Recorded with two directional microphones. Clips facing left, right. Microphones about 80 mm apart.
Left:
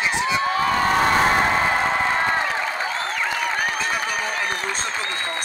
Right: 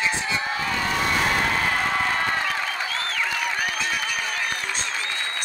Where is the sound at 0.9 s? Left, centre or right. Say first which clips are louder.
Left 4 dB; left.